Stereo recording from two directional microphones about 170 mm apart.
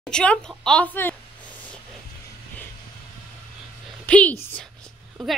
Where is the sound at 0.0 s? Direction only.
5° left (ahead or behind).